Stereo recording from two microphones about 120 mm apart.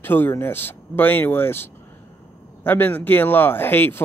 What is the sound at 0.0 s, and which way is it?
Speech, 15° left (ahead or behind).